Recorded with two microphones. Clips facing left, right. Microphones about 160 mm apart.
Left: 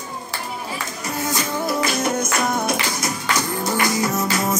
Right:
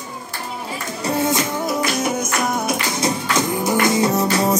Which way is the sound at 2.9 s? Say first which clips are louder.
Right 3 dB; 25° right (ahead or behind).